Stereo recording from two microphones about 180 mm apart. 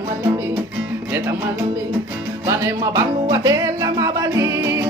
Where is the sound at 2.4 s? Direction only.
15° right (ahead or behind).